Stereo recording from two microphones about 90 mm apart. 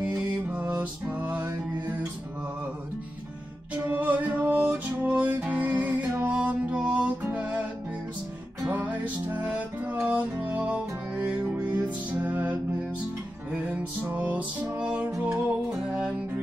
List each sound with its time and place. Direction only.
0.0 s music: 15° right (ahead or behind)
3.7 s music: 15° right (ahead or behind)
8.6 s music: 15° right (ahead or behind)